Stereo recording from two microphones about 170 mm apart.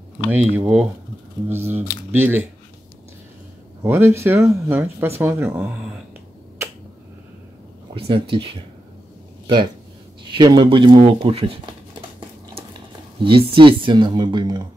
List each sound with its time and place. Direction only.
0.3 s speech: 10° right (ahead or behind)
3.8 s speech: 15° right (ahead or behind)
7.9 s speech: 30° right (ahead or behind)
10.2 s speech: 25° right (ahead or behind)
13.2 s speech: 30° right (ahead or behind)